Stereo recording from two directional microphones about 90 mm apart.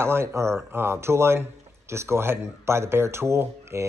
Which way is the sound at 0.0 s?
30° right (ahead or behind).